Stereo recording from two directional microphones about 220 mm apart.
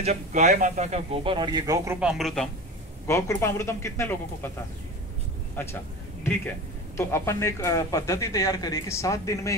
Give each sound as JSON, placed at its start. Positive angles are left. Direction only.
{"t": 0.0, "sound": "speech", "side_deg": -30}
{"t": 2.0, "sound": "speech", "side_deg": 0}
{"t": 3.1, "sound": "speech", "side_deg": 10}
{"t": 5.6, "sound": "speech", "side_deg": 10}
{"t": 7.0, "sound": "speech", "side_deg": 10}